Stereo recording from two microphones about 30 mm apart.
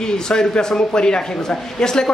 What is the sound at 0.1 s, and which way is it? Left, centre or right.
A man's voice, left.